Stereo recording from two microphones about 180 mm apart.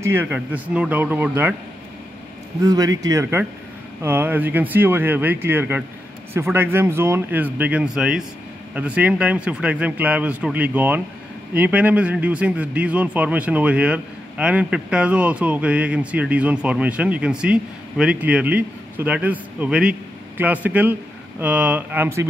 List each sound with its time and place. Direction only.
0.0 s speech: 10° right (ahead or behind)
2.6 s speech: 20° right (ahead or behind)